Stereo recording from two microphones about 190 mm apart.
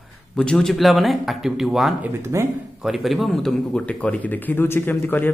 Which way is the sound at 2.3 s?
15° right (ahead or behind).